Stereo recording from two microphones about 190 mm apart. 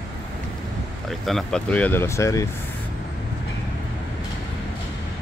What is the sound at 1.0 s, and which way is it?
Speech, centre (ahead or behind).